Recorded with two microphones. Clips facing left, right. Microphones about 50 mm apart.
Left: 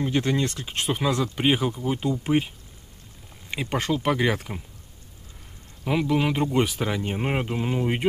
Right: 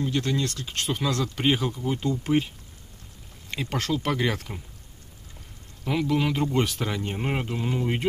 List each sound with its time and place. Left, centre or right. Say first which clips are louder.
0.0 s speech: left 2 dB; left
5.9 s speech: left 2 dB; centre